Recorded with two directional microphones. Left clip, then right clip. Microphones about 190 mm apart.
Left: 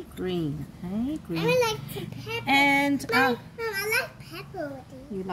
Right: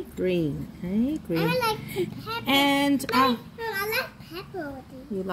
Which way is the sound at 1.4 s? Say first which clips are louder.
Left 3 dB; 45° left (ahead or behind).